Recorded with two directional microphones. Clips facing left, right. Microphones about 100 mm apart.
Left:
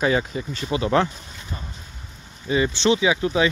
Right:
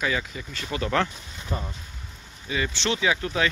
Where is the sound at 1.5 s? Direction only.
65° right (ahead or behind).